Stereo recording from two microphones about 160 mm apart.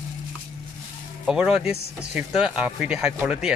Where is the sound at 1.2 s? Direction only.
5° right (ahead or behind).